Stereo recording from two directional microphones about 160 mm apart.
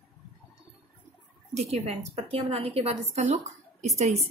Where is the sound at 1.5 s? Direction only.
45° right (ahead or behind).